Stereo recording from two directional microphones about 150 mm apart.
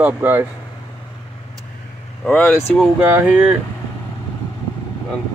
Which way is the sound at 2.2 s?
5° left (ahead or behind).